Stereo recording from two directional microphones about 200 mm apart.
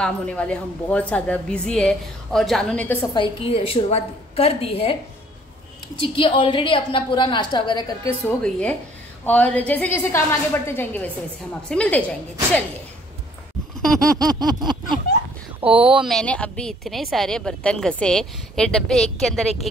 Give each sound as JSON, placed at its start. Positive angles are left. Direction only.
{"t": 0.0, "sound": "a woman's voice", "side_deg": 5}
{"t": 3.2, "sound": "a woman's voice", "side_deg": 25}
{"t": 5.9, "sound": "a woman's voice", "side_deg": 25}
{"t": 8.3, "sound": "a woman's voice", "side_deg": 5}
{"t": 13.7, "sound": "a sound", "side_deg": 0}
{"t": 14.1, "sound": "a sound", "side_deg": -20}
{"t": 15.6, "sound": "a woman's voice", "side_deg": -5}